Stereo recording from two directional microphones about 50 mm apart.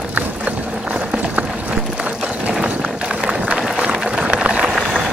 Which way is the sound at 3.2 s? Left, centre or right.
Centre.